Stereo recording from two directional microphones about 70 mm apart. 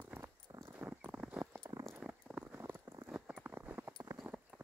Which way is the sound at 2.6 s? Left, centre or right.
Right.